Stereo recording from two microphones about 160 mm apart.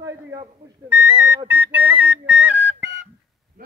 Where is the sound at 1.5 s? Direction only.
10° right (ahead or behind).